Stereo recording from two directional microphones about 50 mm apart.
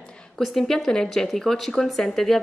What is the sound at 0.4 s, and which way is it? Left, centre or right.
A woman's voice, centre.